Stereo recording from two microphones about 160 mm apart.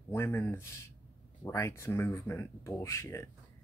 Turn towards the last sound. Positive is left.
turn(degrees=15)  # may be behind; listen again after turning